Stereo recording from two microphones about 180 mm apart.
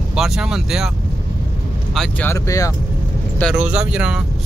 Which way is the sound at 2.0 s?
10° left (ahead or behind).